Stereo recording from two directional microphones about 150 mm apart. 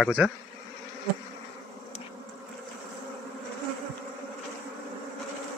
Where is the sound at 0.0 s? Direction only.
5° right (ahead or behind).